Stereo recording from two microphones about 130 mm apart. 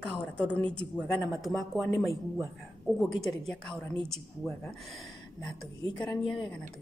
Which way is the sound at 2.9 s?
5° left (ahead or behind).